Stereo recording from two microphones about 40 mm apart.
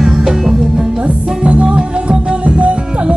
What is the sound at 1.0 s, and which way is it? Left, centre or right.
Music, right.